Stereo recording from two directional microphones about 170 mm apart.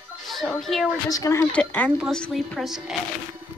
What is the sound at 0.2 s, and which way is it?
Speech, centre (ahead or behind).